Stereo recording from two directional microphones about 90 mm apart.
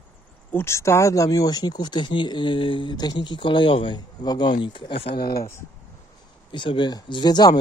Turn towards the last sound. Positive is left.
turn(degrees=50)  # may be behind; listen again after turning